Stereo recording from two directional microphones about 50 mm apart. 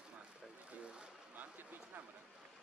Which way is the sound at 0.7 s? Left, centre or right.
Right.